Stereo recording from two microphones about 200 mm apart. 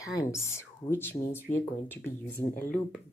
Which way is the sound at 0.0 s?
15° left (ahead or behind).